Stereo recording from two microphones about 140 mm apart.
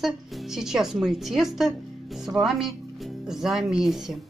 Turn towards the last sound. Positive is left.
turn(degrees=0)  # may be behind; listen again after turning